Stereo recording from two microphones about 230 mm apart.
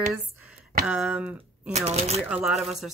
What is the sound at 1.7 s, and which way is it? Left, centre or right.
Speech, right.